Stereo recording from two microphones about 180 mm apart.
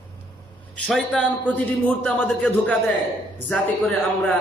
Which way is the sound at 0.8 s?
5° left (ahead or behind).